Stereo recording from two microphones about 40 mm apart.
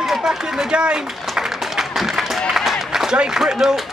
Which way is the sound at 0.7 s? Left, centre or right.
Right.